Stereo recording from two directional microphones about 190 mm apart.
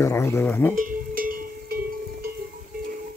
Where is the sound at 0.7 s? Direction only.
45° right (ahead or behind).